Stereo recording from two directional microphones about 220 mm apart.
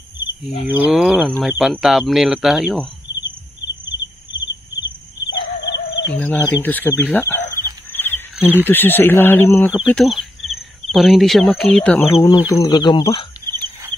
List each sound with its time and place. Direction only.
0.7 s speech: 5° right (ahead or behind)
5.3 s bird: 50° left (ahead or behind)
6.1 s speech: 10° left (ahead or behind)
7.9 s frog: 10° left (ahead or behind)
8.6 s speech: 10° left (ahead or behind)